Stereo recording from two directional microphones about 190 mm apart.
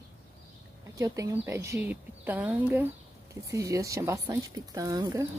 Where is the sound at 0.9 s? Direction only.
15° right (ahead or behind).